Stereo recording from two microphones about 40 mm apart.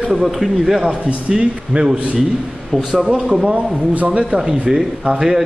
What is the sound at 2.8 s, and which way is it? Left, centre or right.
Speech, centre.